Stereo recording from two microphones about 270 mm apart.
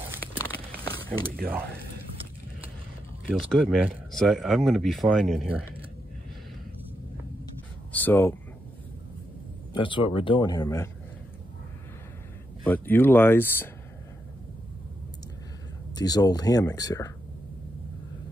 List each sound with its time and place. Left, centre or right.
1.3 s speech: right
3.3 s speech: centre
7.9 s speech: centre
9.8 s speech: centre
12.6 s speech: centre
15.9 s speech: centre